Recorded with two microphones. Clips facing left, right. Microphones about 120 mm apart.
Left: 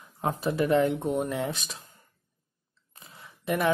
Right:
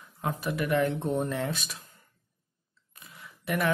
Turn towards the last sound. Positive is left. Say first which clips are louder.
# left 2 dB
turn(degrees=20)  # may be behind; listen again after turning